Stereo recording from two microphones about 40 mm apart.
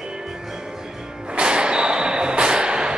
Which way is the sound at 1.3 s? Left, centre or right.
Right.